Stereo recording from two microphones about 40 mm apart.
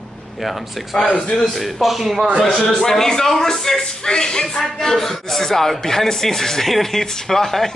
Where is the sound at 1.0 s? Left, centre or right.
Left.